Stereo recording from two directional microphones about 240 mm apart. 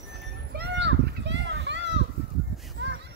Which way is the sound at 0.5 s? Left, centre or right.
Right.